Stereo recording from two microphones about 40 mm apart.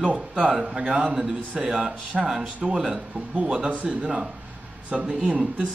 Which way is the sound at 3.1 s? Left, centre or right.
Right.